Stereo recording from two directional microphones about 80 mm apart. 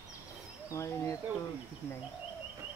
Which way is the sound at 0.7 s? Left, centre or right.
Left.